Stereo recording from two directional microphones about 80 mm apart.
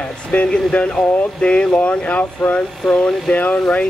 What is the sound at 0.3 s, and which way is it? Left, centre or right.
Speech, centre.